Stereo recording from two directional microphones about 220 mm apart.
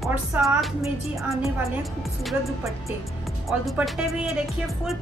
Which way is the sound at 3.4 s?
Centre (ahead or behind).